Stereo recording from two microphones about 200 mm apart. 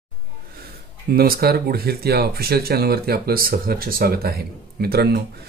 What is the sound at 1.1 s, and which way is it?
Speech, 50° right (ahead or behind).